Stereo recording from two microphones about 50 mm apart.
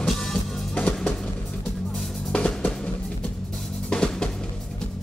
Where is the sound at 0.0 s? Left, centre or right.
Centre.